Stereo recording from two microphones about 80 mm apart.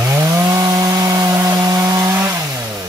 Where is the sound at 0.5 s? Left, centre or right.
Right.